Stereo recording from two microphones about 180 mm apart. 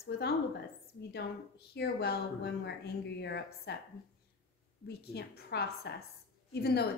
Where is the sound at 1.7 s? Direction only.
65° left (ahead or behind).